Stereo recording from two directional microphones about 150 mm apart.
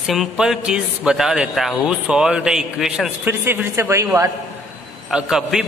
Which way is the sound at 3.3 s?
15° right (ahead or behind).